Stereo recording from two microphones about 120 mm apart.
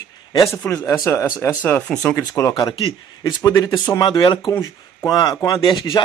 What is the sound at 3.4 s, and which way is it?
Speech, 30° left (ahead or behind).